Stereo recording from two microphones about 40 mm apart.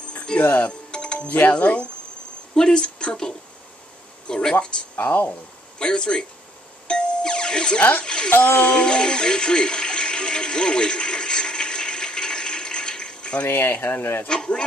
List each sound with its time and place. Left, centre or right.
0.4 s speech: left
0.7 s music: left
1.5 s speech: left
2.5 s a woman's voice: centre
4.9 s speech: left
5.8 s a woman's voice: left
6.9 s music: left
8.0 s a woman's voice: left
8.3 s speech: left
8.6 s music: left
13.5 s speech: left
14.2 s a woman's voice: left